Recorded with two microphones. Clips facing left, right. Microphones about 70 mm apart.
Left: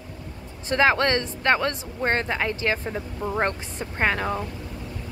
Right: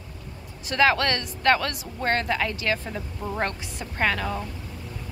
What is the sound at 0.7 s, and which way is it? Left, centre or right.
A woman's voice, left.